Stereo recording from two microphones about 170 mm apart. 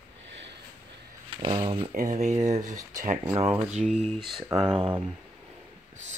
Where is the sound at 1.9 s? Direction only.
50° right (ahead or behind).